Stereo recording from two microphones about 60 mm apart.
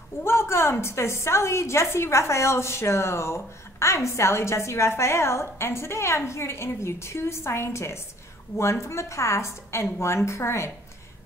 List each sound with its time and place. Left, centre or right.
0.2 s a woman's voice: left